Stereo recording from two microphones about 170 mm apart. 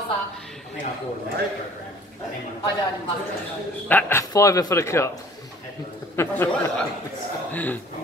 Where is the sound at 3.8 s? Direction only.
10° left (ahead or behind).